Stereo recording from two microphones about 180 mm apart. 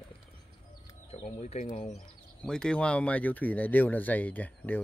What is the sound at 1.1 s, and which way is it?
Speech, 35° left (ahead or behind).